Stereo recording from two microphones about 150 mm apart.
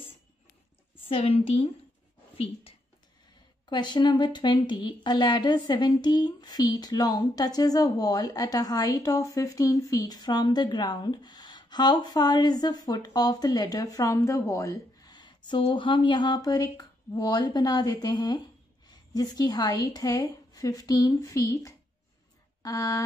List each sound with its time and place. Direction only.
1.0 s a woman's voice: 40° left (ahead or behind); by 23.0 s 25° left (ahead or behind)